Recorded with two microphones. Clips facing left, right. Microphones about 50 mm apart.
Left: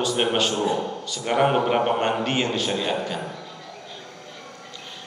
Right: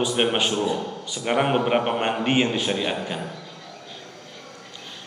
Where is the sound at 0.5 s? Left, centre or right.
Left.